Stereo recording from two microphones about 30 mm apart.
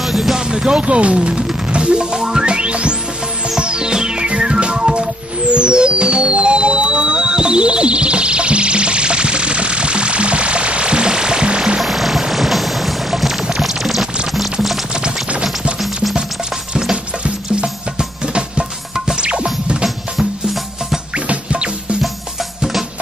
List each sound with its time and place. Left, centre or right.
0.0 s music: centre
0.6 s speech: right
1.9 s music: right
2.1 s music: right
2.4 s music: right
11.8 s vehicle: centre
13.6 s a sound: centre
14.3 s music: centre
15.8 s music: centre
17.9 s music: right
21.3 s music: right